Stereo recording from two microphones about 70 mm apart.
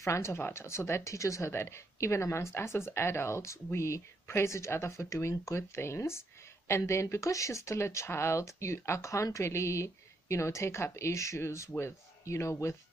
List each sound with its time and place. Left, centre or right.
0.0 s speech: left